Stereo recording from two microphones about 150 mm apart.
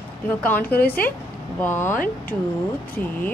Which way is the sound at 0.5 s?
10° left (ahead or behind).